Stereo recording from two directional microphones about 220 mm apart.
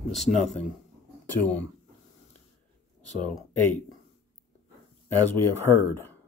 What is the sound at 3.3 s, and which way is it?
Speech, 5° left (ahead or behind).